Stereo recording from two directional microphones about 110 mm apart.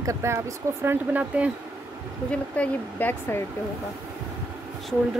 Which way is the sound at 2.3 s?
15° left (ahead or behind).